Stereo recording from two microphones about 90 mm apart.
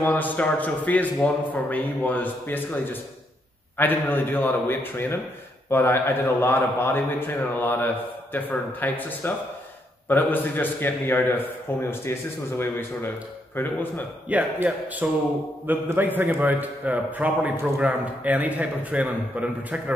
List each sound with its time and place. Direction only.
0.0 s a man's voice: 20° left (ahead or behind)
14.3 s a man's voice: 15° right (ahead or behind)